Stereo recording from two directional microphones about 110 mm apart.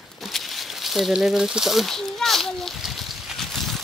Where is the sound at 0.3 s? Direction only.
Centre (ahead or behind).